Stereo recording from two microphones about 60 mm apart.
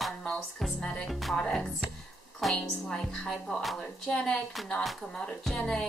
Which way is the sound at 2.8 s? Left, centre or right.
Centre.